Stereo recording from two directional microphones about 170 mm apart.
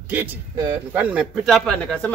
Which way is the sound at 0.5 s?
20° right (ahead or behind).